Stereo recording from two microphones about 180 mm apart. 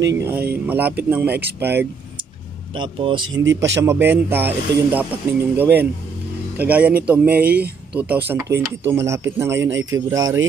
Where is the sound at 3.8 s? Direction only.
10° right (ahead or behind).